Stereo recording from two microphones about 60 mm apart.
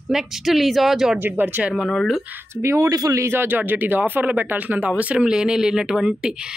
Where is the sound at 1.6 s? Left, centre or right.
Centre.